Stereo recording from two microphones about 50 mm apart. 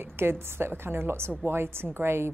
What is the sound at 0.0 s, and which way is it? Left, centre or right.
A woman's voice, right.